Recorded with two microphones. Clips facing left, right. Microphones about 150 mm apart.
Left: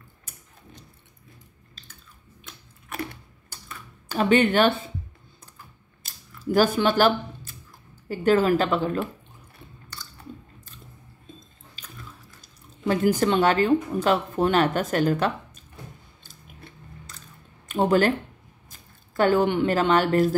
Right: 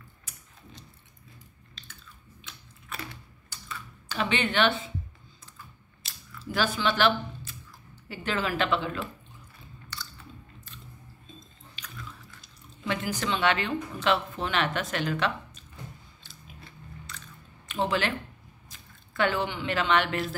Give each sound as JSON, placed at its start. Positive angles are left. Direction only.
{"t": 2.9, "sound": "computer keyboard", "side_deg": 55}
{"t": 6.0, "sound": "camera", "side_deg": 45}
{"t": 8.1, "sound": "speech", "side_deg": 45}
{"t": 9.9, "sound": "chewing", "side_deg": 45}
{"t": 11.8, "sound": "biting", "side_deg": 40}
{"t": 12.4, "sound": "speech", "side_deg": 45}
{"t": 16.2, "sound": "biting", "side_deg": 50}
{"t": 17.6, "sound": "speech", "side_deg": 45}